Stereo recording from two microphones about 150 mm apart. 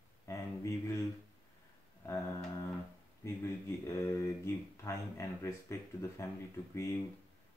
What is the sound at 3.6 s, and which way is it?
Speech, 20° left (ahead or behind).